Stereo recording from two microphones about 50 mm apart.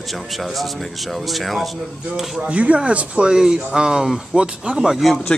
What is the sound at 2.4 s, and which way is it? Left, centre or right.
Speech, right.